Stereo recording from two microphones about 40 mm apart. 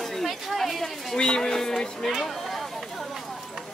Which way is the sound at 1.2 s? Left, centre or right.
Centre.